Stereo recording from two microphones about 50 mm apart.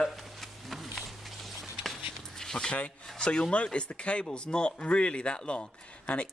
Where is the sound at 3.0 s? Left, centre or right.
Centre.